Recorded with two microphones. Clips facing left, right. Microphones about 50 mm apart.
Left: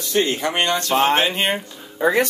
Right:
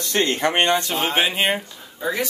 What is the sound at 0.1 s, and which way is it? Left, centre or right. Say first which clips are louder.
Speech: left 2 dB; right.